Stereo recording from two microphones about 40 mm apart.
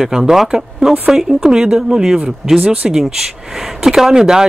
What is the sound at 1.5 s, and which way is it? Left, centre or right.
Speech, centre.